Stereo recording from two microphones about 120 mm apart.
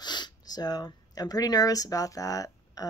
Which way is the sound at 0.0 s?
35° left (ahead or behind).